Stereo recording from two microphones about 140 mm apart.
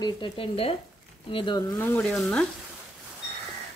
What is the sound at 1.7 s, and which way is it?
Speech, 15° left (ahead or behind).